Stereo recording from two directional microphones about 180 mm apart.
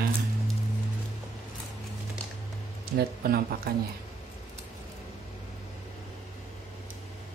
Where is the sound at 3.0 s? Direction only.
60° right (ahead or behind).